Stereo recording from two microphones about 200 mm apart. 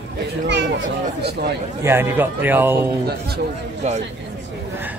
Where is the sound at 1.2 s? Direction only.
55° right (ahead or behind).